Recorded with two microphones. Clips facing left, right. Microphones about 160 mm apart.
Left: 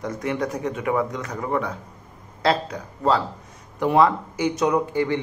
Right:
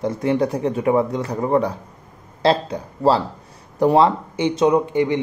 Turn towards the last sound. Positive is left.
turn(degrees=-20)  # may be behind; listen again after turning